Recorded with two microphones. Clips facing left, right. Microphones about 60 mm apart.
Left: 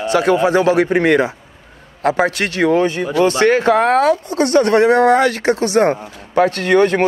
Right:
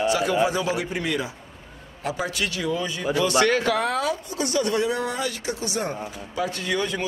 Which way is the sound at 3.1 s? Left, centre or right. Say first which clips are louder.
Left 7 dB; left.